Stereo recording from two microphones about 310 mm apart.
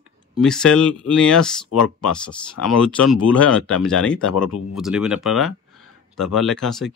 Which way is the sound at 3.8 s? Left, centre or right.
Centre.